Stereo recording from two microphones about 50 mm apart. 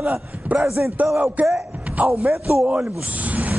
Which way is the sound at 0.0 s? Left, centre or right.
Right.